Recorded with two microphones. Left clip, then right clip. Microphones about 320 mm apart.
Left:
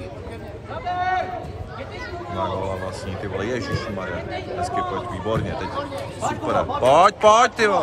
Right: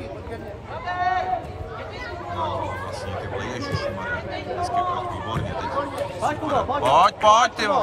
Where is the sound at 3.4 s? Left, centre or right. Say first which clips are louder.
Left 5 dB; centre.